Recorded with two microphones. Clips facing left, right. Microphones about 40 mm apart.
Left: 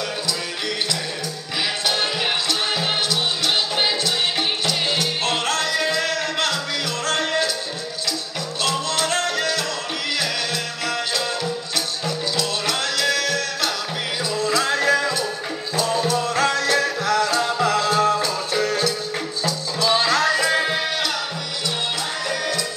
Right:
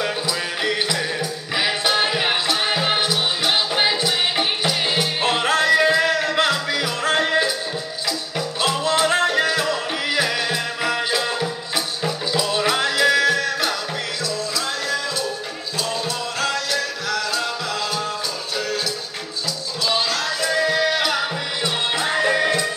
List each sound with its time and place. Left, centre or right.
1.6 s music: centre
8.6 s music: centre
14.4 s music: left
19.4 s music: left
20.9 s music: centre
22.0 s music: right